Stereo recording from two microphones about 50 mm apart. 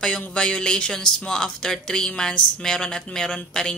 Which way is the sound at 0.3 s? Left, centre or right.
Centre.